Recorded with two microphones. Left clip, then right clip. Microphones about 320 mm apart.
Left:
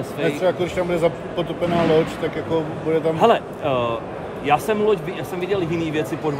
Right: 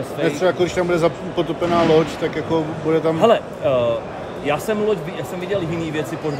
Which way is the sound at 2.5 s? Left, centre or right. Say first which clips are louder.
Right 2 dB; right.